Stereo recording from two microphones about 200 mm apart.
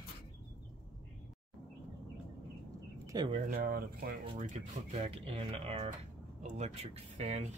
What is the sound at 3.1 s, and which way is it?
Speech, 20° right (ahead or behind).